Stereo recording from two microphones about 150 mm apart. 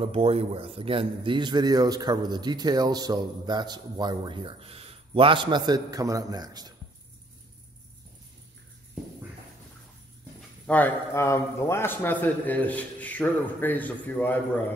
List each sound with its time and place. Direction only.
0.0 s a man's voice: 40° right (ahead or behind)
10.7 s a man's voice: 15° left (ahead or behind)